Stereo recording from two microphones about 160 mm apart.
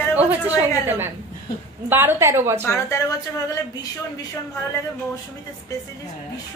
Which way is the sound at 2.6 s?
15° left (ahead or behind).